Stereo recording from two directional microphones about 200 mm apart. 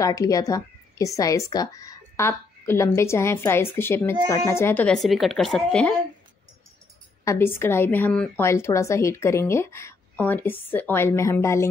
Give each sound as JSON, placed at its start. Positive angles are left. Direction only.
{"t": 0.0, "sound": "a woman's voice", "side_deg": 15}
{"t": 7.2, "sound": "speech", "side_deg": 10}